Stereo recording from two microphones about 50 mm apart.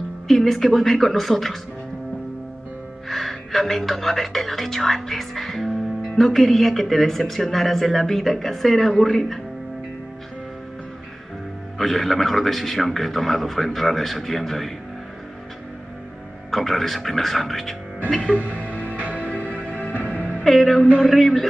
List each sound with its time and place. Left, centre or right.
0.3 s speech: centre
3.1 s speech: centre
11.8 s speech: centre
16.4 s speech: centre
18.7 s music: left
18.9 s music: right
19.6 s music: left
20.4 s speech: centre